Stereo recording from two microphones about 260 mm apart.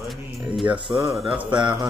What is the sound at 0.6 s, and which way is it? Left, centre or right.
Speech, centre.